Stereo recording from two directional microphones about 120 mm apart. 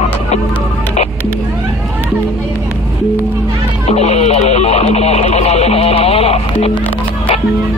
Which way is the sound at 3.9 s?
65° left (ahead or behind).